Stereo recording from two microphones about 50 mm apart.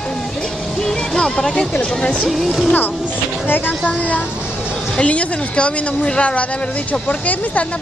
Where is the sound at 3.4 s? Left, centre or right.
Left.